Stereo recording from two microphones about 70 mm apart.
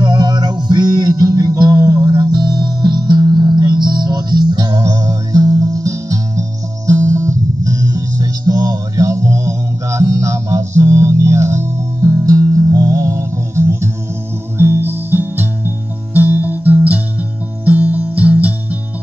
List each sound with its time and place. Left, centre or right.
0.0 s music: right
4.8 s music: right